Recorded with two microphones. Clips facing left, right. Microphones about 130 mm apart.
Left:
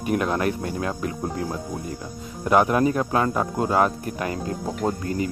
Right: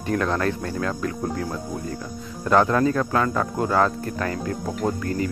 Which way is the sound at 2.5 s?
20° left (ahead or behind).